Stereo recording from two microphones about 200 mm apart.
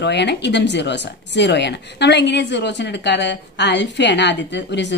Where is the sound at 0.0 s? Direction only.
60° left (ahead or behind).